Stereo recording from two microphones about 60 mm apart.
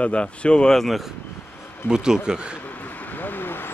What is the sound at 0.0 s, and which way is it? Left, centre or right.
Speech, left.